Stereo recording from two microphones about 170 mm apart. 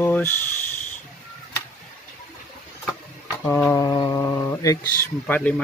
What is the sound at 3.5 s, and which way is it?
Speech, 10° left (ahead or behind).